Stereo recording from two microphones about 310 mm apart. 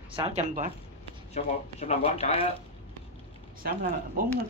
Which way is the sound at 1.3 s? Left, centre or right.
Left.